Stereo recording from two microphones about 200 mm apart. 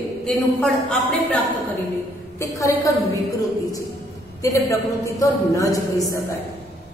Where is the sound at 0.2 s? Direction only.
5° left (ahead or behind).